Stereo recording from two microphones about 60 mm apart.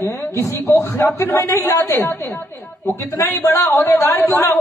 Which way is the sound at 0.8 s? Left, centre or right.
Left.